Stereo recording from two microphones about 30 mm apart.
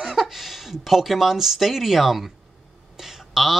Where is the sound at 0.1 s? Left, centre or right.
Centre.